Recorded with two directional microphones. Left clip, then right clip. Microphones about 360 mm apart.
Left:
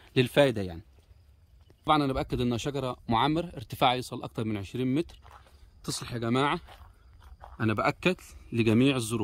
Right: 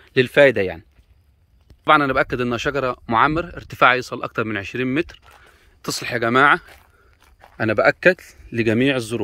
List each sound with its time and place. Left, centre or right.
0.0 s speech: centre
1.9 s speech: centre
7.6 s speech: centre